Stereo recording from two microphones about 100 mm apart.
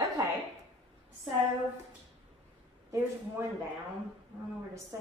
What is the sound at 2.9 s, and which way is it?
Speech, 25° right (ahead or behind).